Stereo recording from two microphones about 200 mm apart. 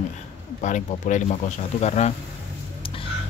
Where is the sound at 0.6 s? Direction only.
40° left (ahead or behind).